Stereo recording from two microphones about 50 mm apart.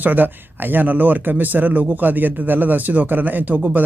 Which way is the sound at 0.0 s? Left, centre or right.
Right.